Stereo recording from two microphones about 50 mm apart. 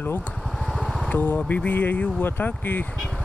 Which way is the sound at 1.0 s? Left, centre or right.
Left.